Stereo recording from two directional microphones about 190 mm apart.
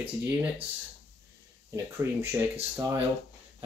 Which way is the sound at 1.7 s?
15° right (ahead or behind).